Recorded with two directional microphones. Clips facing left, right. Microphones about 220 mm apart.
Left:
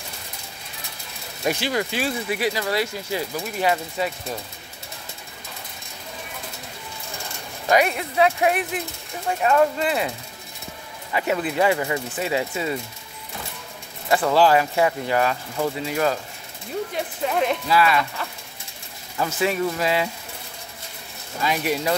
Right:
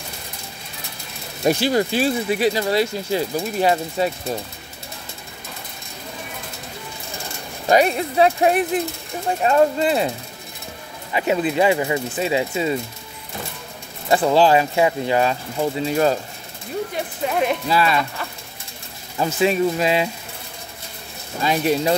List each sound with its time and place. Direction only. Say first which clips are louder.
1.4 s speech: right 6 dB; 35° right (ahead or behind)
7.6 s speech: right 3 dB; 30° right (ahead or behind)
11.1 s speech: right 4 dB; 20° right (ahead or behind)
14.0 s speech: right 2 dB; 25° right (ahead or behind)
16.9 s speech: even; 5° right (ahead or behind)
17.6 s speech: even; 25° right (ahead or behind)
19.1 s speech: right 4 dB; 20° right (ahead or behind)
21.4 s speech: right 4 dB; 25° right (ahead or behind)